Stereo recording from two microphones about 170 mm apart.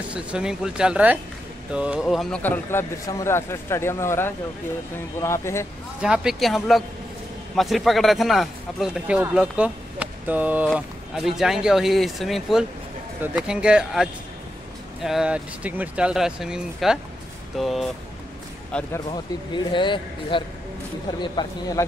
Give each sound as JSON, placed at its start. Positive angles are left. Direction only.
{"t": 0.1, "sound": "a man's voice", "side_deg": -5}
{"t": 5.9, "sound": "a man's voice", "side_deg": -5}
{"t": 15.0, "sound": "a man's voice", "side_deg": -5}
{"t": 19.5, "sound": "speech", "side_deg": 30}